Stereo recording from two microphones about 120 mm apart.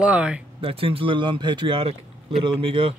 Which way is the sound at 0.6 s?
50° right (ahead or behind).